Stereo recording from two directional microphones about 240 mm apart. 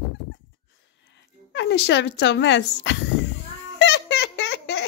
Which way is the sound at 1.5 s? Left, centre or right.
Left.